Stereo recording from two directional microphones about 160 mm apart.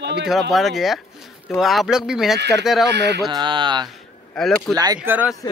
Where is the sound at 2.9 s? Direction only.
90° right.